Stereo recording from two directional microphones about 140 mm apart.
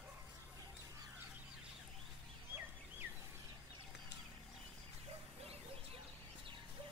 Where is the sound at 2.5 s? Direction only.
15° right (ahead or behind).